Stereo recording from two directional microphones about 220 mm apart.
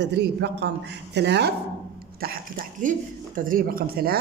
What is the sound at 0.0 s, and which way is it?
A man's voice, 50° right (ahead or behind).